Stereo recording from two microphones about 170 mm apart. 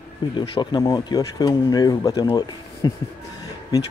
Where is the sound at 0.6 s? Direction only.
25° left (ahead or behind).